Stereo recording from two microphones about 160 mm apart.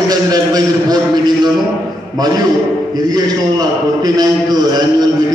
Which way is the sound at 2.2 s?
25° right (ahead or behind).